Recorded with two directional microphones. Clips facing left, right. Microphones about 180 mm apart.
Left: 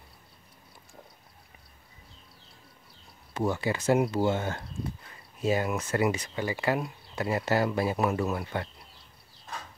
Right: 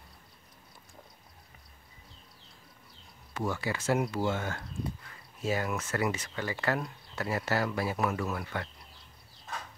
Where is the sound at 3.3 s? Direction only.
25° left (ahead or behind).